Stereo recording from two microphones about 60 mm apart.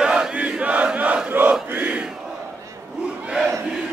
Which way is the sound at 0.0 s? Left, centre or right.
Centre.